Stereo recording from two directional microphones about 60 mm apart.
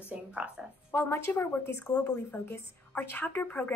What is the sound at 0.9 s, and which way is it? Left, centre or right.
A woman's voice, left.